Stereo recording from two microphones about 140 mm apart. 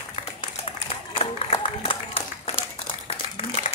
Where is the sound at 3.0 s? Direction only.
50° left (ahead or behind).